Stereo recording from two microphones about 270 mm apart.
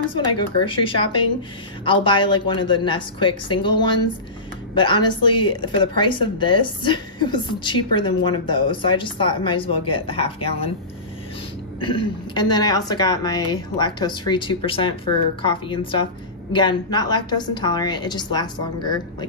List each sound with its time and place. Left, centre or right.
0.1 s a woman's voice: centre
4.7 s speech: centre
11.8 s a woman's voice: centre